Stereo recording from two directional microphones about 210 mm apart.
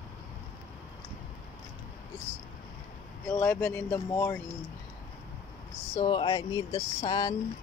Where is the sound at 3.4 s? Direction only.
10° left (ahead or behind).